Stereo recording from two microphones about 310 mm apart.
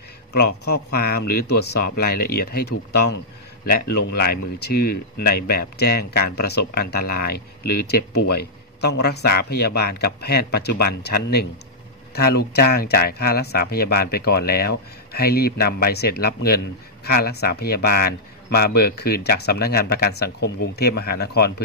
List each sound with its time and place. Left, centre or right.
0.3 s speech: left
3.7 s speech: left